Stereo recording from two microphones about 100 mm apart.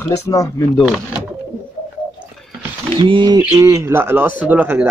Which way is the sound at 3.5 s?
30° right (ahead or behind).